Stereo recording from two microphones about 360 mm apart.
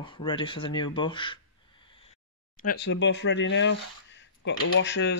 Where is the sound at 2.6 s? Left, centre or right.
Left.